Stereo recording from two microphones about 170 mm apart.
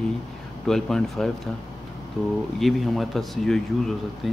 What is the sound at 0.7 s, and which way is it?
Speech, 5° left (ahead or behind).